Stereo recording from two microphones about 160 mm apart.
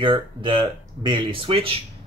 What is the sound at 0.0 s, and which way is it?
Speech, 30° right (ahead or behind).